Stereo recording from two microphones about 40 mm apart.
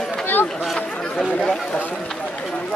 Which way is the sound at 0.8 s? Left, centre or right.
Centre.